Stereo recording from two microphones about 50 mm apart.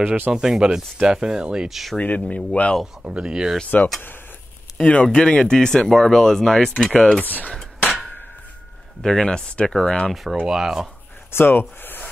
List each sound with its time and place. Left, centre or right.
0.0 s speech: right
0.3 s speech: centre
1.7 s speech: centre
2.0 s speech: left
3.0 s speech: right
3.3 s speech: centre
4.7 s speech: centre
7.2 s speech: left
9.0 s speech: centre
10.4 s speech: centre
11.3 s speech: left